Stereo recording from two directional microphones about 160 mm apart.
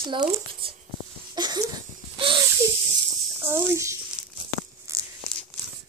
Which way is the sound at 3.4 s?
15° right (ahead or behind).